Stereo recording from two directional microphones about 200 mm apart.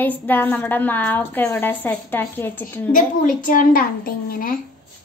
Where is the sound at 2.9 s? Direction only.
40° left (ahead or behind).